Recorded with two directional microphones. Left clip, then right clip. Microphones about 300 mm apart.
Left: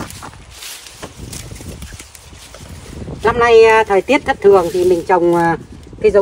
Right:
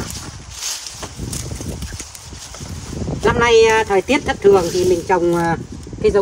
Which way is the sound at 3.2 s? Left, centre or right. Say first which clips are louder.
Left 3 dB; centre.